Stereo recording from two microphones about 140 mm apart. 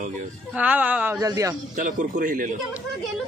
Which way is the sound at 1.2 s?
25° right (ahead or behind).